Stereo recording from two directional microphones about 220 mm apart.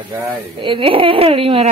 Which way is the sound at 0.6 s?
25° right (ahead or behind).